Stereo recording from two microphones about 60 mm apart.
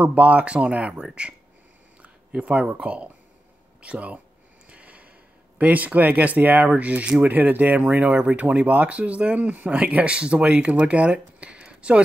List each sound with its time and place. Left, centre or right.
0.0 s speech: right
4.6 s a sound: right
5.6 s speech: right